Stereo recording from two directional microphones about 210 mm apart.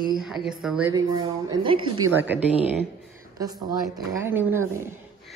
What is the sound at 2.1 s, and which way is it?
Speech, 10° right (ahead or behind).